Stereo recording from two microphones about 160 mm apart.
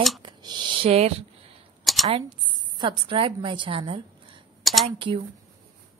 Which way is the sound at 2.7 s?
30° right (ahead or behind).